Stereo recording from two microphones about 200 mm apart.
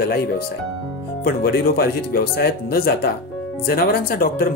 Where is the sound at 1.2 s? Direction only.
50° left (ahead or behind).